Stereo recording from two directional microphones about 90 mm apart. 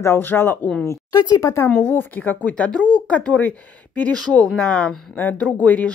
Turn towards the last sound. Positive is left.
turn(degrees=15)  # may be behind; listen again after turning